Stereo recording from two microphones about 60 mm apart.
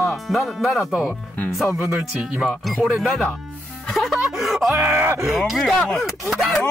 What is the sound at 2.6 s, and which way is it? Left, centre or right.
Speech, centre.